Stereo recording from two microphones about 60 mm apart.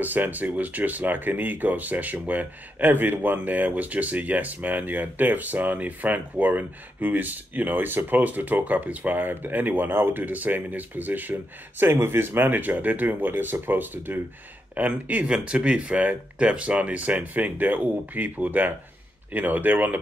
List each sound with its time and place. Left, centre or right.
0.0 s speech: right
11.8 s speech: right
15.2 s speech: centre; by 20.0 s right